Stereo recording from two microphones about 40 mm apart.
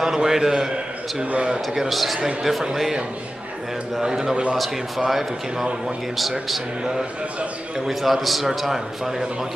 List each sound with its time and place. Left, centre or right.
0.0 s a man's voice: centre
1.7 s a man's voice: centre
4.1 s a man's voice: centre
4.6 s speech: centre
7.8 s a man's voice: centre